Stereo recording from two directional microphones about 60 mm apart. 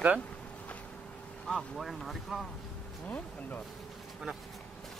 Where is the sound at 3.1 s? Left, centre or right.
Left.